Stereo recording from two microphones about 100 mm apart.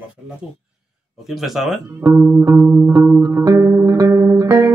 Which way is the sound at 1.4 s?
Centre (ahead or behind).